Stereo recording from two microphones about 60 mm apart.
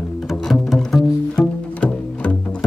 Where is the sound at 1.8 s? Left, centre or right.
Left.